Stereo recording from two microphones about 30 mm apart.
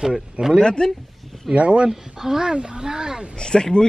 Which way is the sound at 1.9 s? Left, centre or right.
Centre.